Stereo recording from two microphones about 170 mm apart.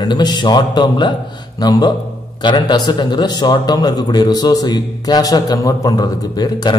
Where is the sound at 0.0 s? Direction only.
25° left (ahead or behind).